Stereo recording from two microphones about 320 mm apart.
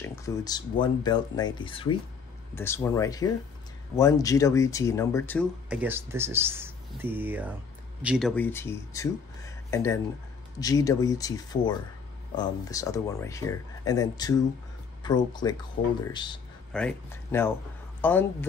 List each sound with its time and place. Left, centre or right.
0.0 s speech: centre